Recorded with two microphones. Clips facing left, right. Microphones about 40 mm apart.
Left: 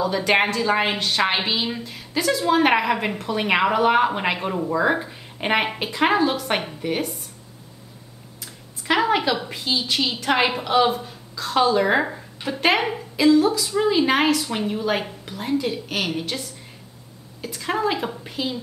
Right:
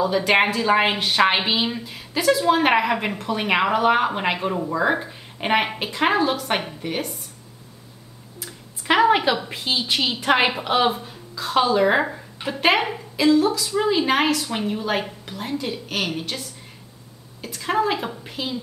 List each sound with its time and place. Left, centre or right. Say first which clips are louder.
0.0 s a woman's voice: right 1 dB; centre
8.4 s a sound: right 3 dB; centre
9.5 s a woman's voice: even; centre